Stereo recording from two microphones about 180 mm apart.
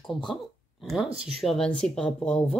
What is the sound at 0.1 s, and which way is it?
Speech, centre (ahead or behind).